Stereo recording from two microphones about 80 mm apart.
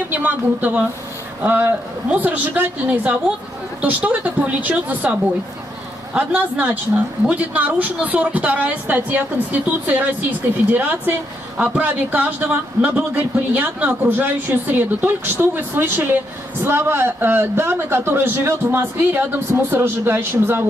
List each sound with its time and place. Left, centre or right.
0.1 s a woman's voice: right